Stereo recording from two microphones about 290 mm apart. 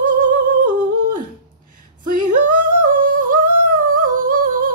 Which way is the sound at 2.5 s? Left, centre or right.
Right.